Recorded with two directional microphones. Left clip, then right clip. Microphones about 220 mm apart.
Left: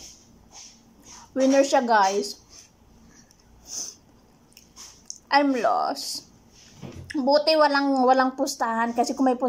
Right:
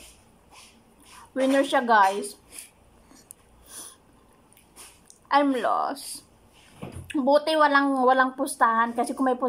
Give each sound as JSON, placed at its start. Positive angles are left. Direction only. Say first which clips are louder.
{"t": 1.3, "sound": "a woman's voice", "louder": "left 3 dB", "side_deg": 0}
{"t": 5.3, "sound": "a woman's voice", "louder": "left 1 dB", "side_deg": 0}